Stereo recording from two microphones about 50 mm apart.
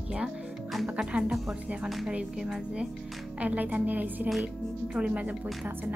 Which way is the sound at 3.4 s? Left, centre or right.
Right.